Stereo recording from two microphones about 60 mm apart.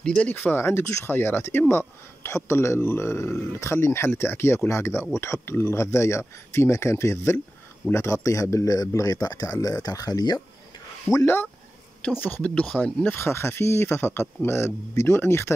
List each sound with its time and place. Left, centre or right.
0.0 s speech: centre
0.3 s speech: left
11.1 s speech: centre
12.2 s speech: left
13.1 s speech: left